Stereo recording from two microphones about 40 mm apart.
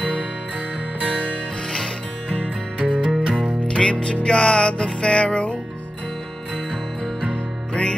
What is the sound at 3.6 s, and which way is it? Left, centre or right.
Music, centre.